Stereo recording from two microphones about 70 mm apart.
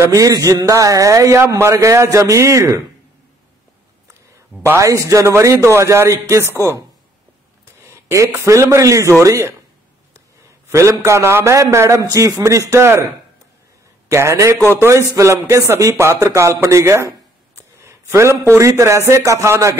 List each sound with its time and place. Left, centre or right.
0.0 s a man's voice: right
4.7 s a man's voice: right
7.8 s a sound: right
8.5 s a man's voice: right
10.7 s a man's voice: right
12.0 s a man's voice: right
14.0 s a man's voice: right